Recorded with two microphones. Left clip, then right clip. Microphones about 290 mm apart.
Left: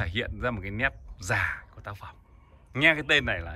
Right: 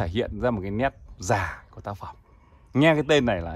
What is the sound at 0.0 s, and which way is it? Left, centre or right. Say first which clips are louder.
Speech: right 4 dB; centre.